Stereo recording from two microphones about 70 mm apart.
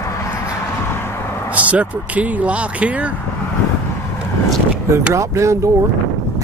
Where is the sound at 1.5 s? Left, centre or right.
Right.